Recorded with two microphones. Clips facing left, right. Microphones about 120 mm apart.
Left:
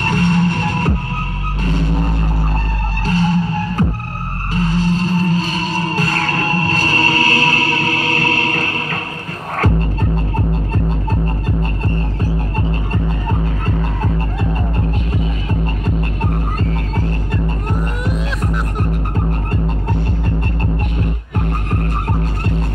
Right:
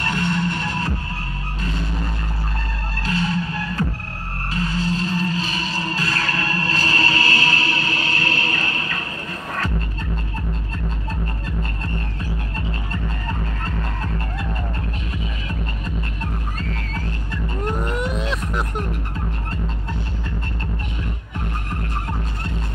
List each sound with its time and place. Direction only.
0.0 s music: 50° left (ahead or behind)
1.7 s a sound: 45° left (ahead or behind)
3.1 s music: 40° left (ahead or behind)
12.2 s music: 40° left (ahead or behind)
17.7 s music: centre (ahead or behind)
19.1 s music: 55° left (ahead or behind)